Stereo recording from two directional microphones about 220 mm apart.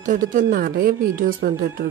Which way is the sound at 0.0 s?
35° right (ahead or behind).